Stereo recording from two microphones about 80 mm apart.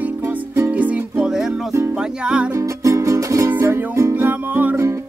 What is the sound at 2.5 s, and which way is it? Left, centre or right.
Music, right.